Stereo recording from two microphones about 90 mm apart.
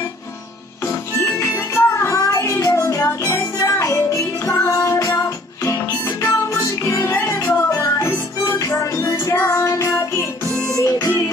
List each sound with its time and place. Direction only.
0.8 s music: 30° left (ahead or behind)
2.1 s music: 40° left (ahead or behind)